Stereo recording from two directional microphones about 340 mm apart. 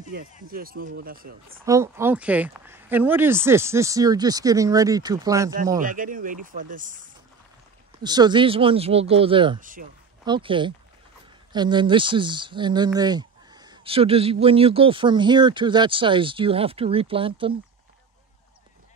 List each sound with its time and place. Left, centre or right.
0.5 s speech: right
1.7 s speech: centre
5.8 s speech: right
8.0 s speech: centre